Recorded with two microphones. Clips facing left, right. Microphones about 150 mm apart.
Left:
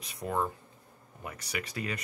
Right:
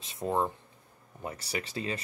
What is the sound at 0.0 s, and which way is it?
Speech, 25° right (ahead or behind).